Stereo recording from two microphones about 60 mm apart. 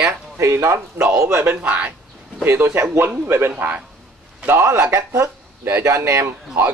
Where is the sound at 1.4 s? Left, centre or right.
Right.